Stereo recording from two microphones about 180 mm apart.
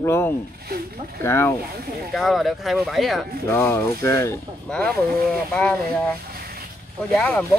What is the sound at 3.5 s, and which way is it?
Speech, 15° left (ahead or behind).